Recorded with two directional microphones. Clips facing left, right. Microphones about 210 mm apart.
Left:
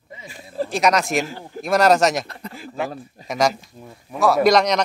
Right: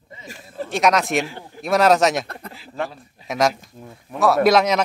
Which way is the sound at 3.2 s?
Centre (ahead or behind).